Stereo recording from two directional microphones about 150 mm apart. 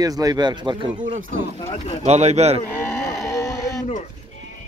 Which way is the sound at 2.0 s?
45° right (ahead or behind).